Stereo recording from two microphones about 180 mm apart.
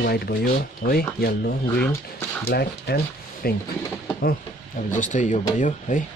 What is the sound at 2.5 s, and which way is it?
Speech, 65° left (ahead or behind).